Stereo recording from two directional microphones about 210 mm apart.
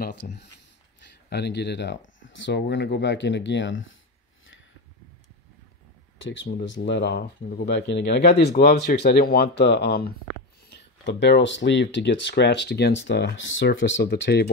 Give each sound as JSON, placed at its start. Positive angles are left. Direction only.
{"t": 0.0, "sound": "speech", "side_deg": 55}
{"t": 6.3, "sound": "speech", "side_deg": 60}